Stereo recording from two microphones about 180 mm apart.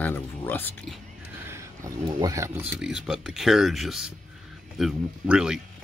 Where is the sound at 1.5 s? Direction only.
20° right (ahead or behind).